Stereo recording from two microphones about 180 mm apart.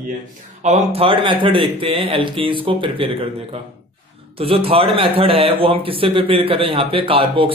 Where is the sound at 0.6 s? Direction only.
35° right (ahead or behind).